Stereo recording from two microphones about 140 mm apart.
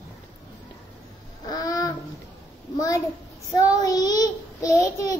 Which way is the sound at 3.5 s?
25° left (ahead or behind).